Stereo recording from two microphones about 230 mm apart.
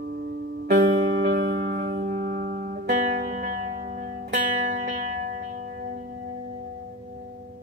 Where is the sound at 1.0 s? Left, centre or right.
Right.